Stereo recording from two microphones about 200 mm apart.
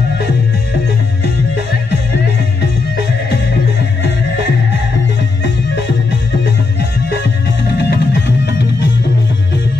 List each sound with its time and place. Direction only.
7.6 s music: 55° left (ahead or behind)